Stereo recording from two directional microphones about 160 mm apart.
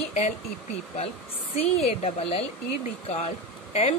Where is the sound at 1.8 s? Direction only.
40° left (ahead or behind).